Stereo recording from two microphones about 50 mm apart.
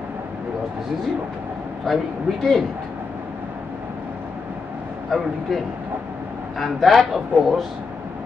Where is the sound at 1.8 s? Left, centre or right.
Centre.